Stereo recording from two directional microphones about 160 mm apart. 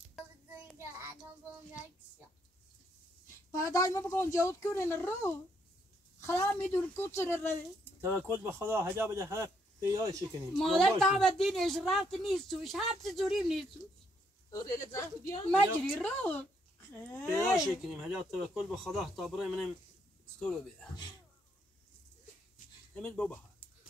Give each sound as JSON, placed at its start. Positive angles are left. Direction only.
{"t": 3.5, "sound": "speech", "side_deg": 20}
{"t": 8.3, "sound": "speech", "side_deg": -15}
{"t": 10.6, "sound": "speech", "side_deg": 5}
{"t": 14.5, "sound": "speech", "side_deg": 20}
{"t": 15.8, "sound": "speech", "side_deg": 10}
{"t": 17.8, "sound": "speech", "side_deg": 0}
{"t": 22.9, "sound": "speech", "side_deg": 5}